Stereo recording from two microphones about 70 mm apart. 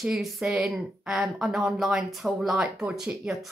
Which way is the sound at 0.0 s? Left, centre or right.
Centre.